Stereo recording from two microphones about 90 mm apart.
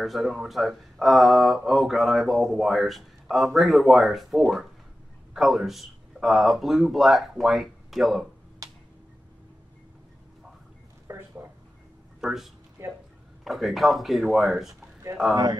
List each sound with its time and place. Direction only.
0.0 s speech: centre (ahead or behind)
8.6 s a sound: 40° right (ahead or behind)
11.1 s a sound: 30° right (ahead or behind)
12.2 s speech: 5° right (ahead or behind)
12.8 s speech: 30° right (ahead or behind)
13.4 s speech: centre (ahead or behind)